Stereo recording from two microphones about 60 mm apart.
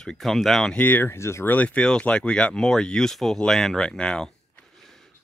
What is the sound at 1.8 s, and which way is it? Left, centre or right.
Speech, centre.